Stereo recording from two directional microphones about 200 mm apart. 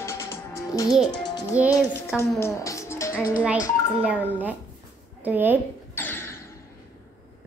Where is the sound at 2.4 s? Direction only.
15° left (ahead or behind).